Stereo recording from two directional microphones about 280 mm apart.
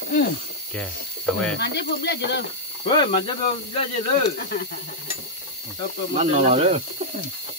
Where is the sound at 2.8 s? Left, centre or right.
Centre.